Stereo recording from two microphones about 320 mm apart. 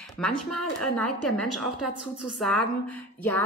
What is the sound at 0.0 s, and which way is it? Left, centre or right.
Speech, centre.